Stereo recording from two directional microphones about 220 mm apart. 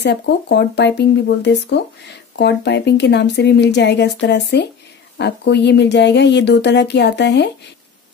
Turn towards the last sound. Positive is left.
turn(degrees=50)  # may be behind; listen again after turning